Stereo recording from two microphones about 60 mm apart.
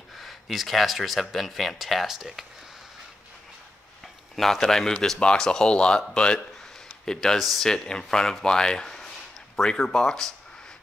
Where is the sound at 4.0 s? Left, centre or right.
Centre.